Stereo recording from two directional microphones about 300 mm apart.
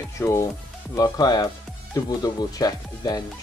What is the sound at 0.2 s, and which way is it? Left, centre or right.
Speech, centre.